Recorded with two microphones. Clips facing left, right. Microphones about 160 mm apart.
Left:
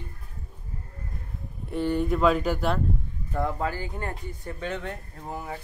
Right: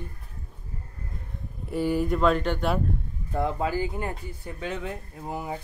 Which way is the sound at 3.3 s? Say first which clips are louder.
Right 2 dB; 15° right (ahead or behind).